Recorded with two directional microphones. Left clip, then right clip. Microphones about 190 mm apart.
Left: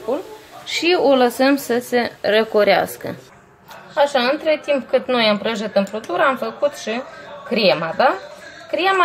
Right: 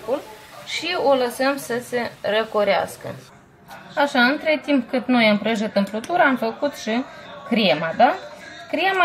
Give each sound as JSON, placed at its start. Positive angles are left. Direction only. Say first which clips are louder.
{"t": 0.7, "sound": "a woman's voice", "louder": "left 4 dB", "side_deg": 40}
{"t": 3.9, "sound": "a woman's voice", "louder": "left 2 dB", "side_deg": 35}